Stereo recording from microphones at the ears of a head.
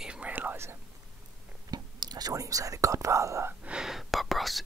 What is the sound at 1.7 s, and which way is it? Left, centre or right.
Speech, right.